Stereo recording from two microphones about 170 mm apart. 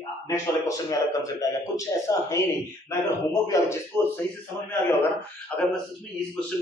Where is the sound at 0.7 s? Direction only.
20° left (ahead or behind).